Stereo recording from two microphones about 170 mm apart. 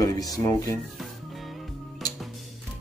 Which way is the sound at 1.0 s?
Centre (ahead or behind).